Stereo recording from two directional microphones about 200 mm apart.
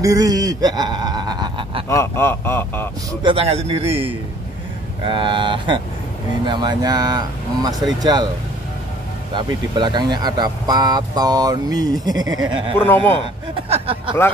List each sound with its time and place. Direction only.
0.0 s a sound: 20° right (ahead or behind)
1.9 s speech: 15° left (ahead or behind)
3.1 s speech: 25° right (ahead or behind)
9.3 s speech: 25° right (ahead or behind)
12.7 s speech: 10° left (ahead or behind)
13.7 s speech: 30° right (ahead or behind)